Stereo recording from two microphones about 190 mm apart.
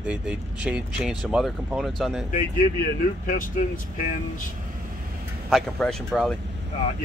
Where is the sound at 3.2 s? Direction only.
45° left (ahead or behind).